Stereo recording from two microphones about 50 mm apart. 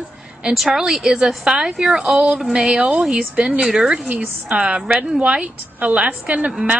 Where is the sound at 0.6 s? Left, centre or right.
Centre.